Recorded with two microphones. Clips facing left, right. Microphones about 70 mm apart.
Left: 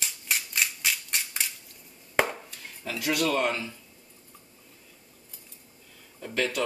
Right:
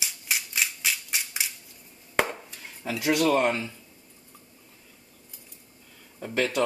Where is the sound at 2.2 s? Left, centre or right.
Centre.